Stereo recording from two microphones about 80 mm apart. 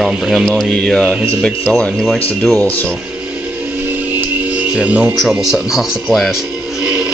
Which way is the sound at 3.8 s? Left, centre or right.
Centre.